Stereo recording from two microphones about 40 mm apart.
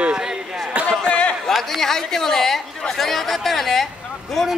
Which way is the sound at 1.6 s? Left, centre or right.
Centre.